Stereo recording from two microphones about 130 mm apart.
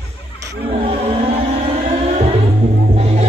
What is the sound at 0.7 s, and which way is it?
Music, 50° right (ahead or behind).